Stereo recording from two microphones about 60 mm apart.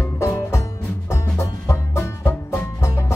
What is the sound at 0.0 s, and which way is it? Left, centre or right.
Music, left.